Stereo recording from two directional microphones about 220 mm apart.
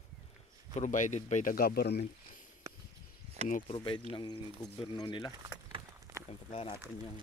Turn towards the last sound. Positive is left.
turn(degrees=25)  # may be behind; listen again after turning